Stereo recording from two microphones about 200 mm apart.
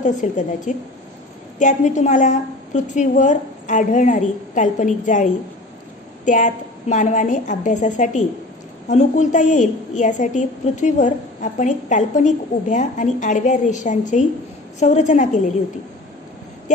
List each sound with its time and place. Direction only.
0.0 s a woman's voice: 40° left (ahead or behind)